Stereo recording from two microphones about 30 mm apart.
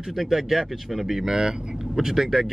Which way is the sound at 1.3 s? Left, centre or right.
Right.